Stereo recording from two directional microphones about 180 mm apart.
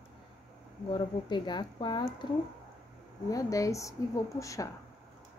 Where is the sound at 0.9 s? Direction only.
25° left (ahead or behind).